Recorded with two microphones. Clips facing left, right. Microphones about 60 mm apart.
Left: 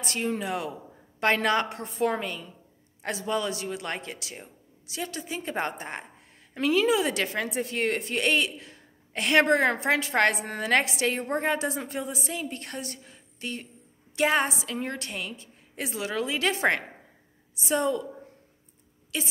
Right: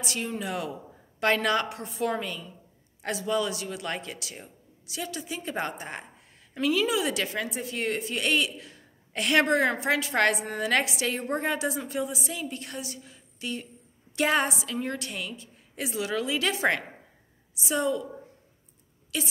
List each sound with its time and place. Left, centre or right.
0.4 s a woman's voice: left
14.1 s a woman's voice: left
19.1 s a woman's voice: left